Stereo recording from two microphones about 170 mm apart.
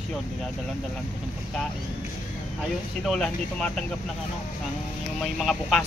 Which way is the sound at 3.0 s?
5° left (ahead or behind).